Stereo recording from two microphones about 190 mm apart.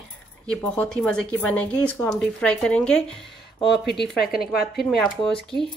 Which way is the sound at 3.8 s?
60° left (ahead or behind).